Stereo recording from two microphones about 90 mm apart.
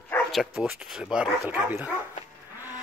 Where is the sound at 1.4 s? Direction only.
20° right (ahead or behind).